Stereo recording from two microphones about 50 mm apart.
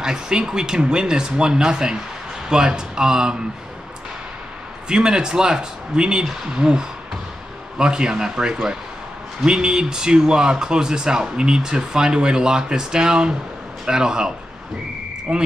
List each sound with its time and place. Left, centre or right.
0.0 s speech: centre
4.8 s speech: centre